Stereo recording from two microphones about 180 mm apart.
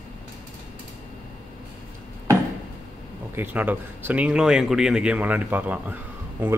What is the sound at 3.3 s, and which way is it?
Speech, 10° right (ahead or behind).